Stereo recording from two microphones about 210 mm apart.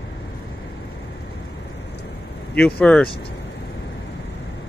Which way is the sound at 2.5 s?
5° left (ahead or behind).